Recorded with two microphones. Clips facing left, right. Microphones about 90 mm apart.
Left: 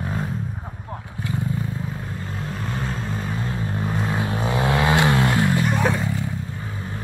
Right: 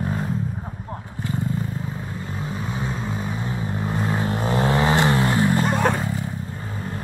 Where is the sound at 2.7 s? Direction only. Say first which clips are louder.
Left 1 dB; 5° right (ahead or behind).